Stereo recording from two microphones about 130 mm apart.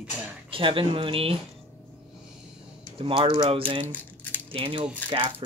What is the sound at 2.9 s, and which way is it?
Speech, 45° right (ahead or behind).